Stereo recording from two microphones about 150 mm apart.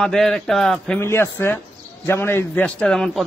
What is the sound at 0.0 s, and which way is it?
Speech, centre (ahead or behind).